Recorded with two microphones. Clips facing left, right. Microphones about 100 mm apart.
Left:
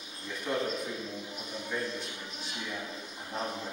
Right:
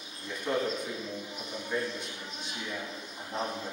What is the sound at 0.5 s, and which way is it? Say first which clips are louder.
Speech: right 2 dB; centre (ahead or behind).